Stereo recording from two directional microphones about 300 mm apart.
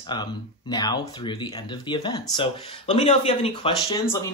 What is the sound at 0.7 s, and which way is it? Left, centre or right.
Speech, centre.